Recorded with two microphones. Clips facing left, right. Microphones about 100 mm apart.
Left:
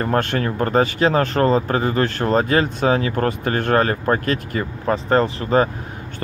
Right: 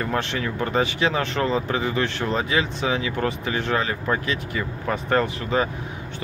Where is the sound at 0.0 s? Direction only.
45° left (ahead or behind).